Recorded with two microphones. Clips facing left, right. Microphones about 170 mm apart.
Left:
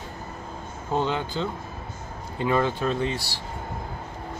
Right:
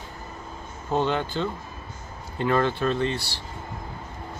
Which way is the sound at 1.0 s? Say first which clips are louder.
Right 1 dB; 15° left (ahead or behind).